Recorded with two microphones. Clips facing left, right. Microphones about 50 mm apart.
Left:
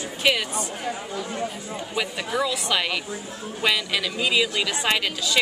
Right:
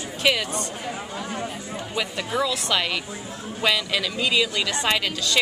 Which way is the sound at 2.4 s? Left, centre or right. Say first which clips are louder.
Right 1 dB; centre.